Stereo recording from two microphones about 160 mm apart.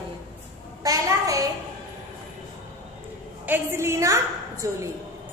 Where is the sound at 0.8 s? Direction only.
20° right (ahead or behind).